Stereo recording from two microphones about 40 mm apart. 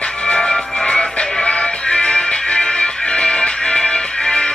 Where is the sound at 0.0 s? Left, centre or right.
Left.